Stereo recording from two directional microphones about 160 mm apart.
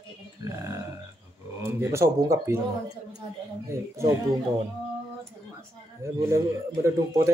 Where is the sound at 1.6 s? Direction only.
15° right (ahead or behind).